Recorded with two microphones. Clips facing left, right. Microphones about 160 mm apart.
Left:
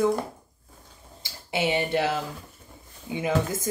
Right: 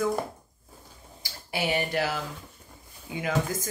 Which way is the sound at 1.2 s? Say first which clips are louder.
Left 4 dB; 20° left (ahead or behind).